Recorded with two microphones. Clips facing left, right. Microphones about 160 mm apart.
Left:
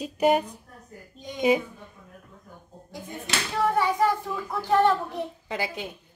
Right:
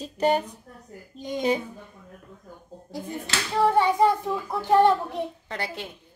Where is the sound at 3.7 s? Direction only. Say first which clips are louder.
Right 3 dB; 25° right (ahead or behind).